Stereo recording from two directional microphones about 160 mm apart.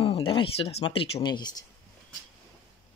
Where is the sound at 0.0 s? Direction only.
35° left (ahead or behind).